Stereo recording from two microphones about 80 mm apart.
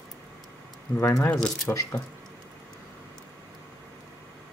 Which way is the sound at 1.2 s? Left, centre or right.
Centre.